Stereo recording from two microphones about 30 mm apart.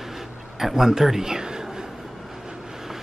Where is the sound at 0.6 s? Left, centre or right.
Centre.